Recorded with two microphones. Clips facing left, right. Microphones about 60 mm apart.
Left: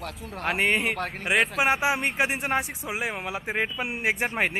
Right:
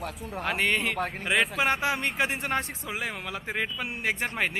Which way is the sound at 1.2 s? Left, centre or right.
Centre.